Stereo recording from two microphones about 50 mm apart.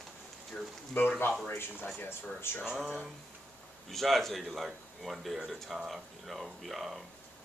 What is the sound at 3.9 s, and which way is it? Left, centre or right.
Speech, centre.